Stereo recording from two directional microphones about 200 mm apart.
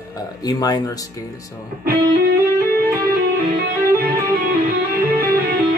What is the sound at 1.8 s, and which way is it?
Music, 50° right (ahead or behind).